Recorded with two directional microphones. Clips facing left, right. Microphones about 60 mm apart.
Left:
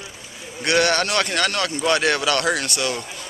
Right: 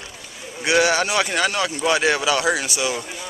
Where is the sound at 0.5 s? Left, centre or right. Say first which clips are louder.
Right 1 dB; centre.